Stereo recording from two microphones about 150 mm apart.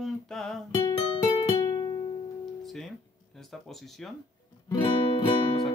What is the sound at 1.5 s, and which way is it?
Music, 25° left (ahead or behind).